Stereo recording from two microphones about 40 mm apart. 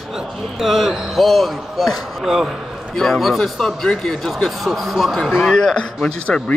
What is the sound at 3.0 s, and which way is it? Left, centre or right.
Speech, centre.